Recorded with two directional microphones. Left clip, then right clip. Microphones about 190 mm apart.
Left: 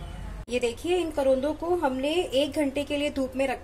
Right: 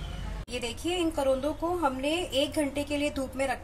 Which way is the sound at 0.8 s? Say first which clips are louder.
Left 1 dB; 40° left (ahead or behind).